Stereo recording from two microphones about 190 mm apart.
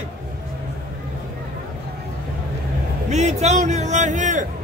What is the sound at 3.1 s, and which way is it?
A man's voice, 35° right (ahead or behind).